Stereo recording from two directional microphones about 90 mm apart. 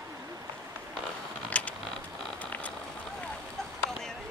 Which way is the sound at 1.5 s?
15° left (ahead or behind).